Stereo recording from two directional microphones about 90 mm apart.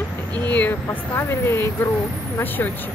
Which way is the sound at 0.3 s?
20° left (ahead or behind).